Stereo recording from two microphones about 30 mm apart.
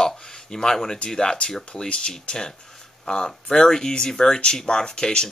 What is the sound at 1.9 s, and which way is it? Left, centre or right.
Speech, left.